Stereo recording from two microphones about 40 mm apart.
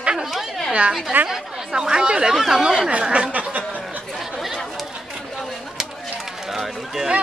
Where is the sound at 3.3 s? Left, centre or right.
Right.